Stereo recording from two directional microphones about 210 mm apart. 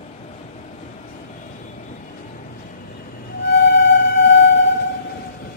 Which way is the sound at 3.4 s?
55° left (ahead or behind).